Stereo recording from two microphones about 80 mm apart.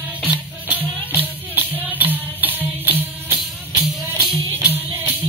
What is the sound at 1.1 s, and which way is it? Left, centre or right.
Music, right.